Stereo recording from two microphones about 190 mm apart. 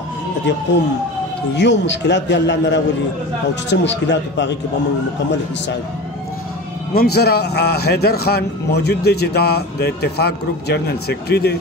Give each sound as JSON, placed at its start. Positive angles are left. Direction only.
{"t": 1.5, "sound": "a man's voice", "side_deg": 65}
{"t": 6.9, "sound": "a man's voice", "side_deg": 55}